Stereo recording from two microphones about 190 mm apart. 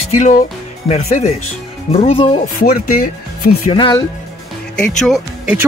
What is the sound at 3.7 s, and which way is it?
Speech, 25° left (ahead or behind).